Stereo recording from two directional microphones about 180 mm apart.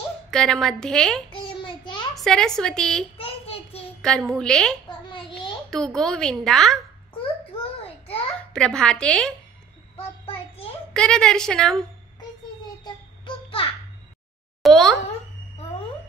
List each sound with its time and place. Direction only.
0.3 s a woman's voice: centre (ahead or behind)
1.4 s child singing: 25° left (ahead or behind)
2.1 s a woman's voice: centre (ahead or behind)
3.2 s a sound: 30° left (ahead or behind)
4.0 s a woman's voice: 5° left (ahead or behind)
4.8 s a sound: 25° left (ahead or behind)
5.7 s a woman's voice: 5° left (ahead or behind)
8.5 s a woman's voice: 5° left (ahead or behind)
9.9 s child singing: 30° left (ahead or behind)
10.9 s a woman's voice: 5° left (ahead or behind)
12.8 s child singing: 30° left (ahead or behind)
14.6 s speech: centre (ahead or behind)